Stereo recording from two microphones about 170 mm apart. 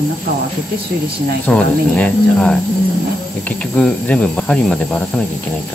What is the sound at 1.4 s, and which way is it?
Speech, 10° left (ahead or behind).